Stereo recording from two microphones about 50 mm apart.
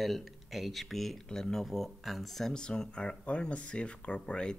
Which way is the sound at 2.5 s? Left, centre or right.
Centre.